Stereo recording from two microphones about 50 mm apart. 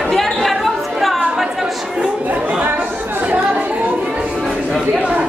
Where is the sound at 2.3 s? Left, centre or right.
Right.